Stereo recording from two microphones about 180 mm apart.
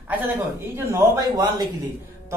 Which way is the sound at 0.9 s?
20° right (ahead or behind).